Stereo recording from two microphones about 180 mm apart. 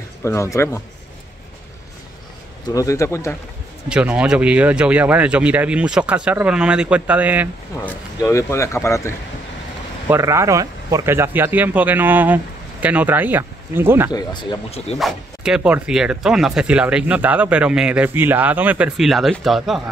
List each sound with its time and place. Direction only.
0.2 s speech: 15° left (ahead or behind)
2.6 s speech: 20° left (ahead or behind)
3.9 s speech: 5° right (ahead or behind)
7.7 s speech: 15° left (ahead or behind)
10.0 s speech: 15° right (ahead or behind)
14.1 s speech: 25° left (ahead or behind)
15.0 s speech: centre (ahead or behind)